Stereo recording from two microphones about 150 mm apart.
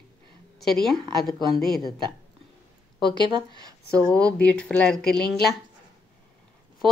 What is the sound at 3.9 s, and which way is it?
Speech, 5° left (ahead or behind).